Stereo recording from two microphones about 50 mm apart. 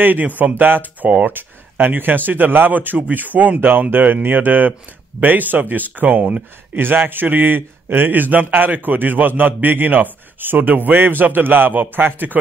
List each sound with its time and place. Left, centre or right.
0.0 s a man's voice: right
6.8 s a man's voice: right